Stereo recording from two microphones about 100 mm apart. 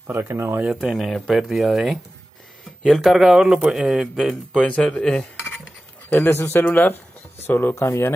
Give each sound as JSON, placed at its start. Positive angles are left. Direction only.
{"t": 0.0, "sound": "speech", "side_deg": -25}
{"t": 0.7, "sound": "speech", "side_deg": 0}
{"t": 4.6, "sound": "cutlery", "side_deg": 10}
{"t": 6.1, "sound": "speech", "side_deg": 25}